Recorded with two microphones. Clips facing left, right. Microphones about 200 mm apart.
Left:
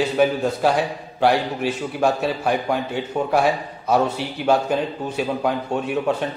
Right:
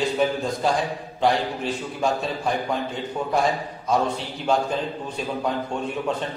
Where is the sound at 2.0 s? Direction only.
65° left (ahead or behind).